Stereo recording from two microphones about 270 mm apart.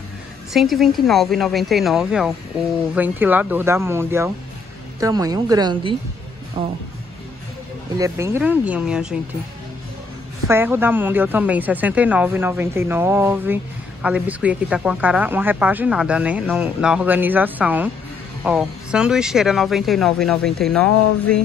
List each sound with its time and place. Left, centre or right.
0.5 s a woman's voice: centre
8.0 s speech: centre
10.5 s a woman's voice: centre